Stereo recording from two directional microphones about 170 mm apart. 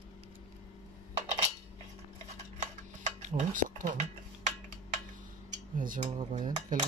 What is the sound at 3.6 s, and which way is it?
Speech, 50° right (ahead or behind).